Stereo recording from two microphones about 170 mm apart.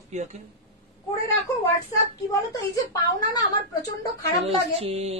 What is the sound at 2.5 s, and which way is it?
Speech, 20° left (ahead or behind).